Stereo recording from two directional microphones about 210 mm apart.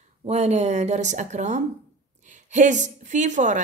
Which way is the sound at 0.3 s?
30° right (ahead or behind).